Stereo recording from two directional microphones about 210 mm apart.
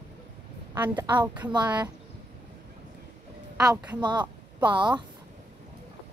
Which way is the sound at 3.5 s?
15° right (ahead or behind).